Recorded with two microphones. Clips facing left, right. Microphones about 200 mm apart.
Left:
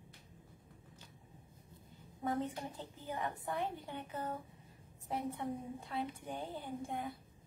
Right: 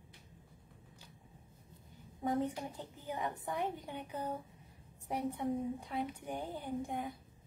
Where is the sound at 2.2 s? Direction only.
15° right (ahead or behind).